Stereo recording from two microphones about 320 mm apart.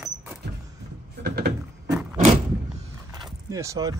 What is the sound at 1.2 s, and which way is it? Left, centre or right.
Door, right.